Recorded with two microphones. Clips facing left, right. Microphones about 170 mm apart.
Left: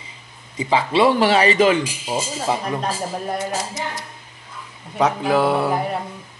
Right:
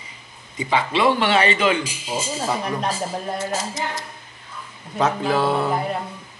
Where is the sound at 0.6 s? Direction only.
30° left (ahead or behind).